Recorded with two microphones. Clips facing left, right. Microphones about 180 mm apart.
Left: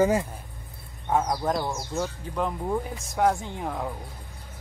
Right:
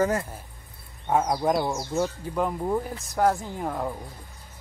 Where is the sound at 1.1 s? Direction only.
10° right (ahead or behind).